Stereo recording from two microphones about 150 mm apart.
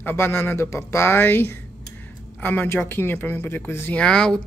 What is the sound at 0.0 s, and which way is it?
Speech, 15° left (ahead or behind).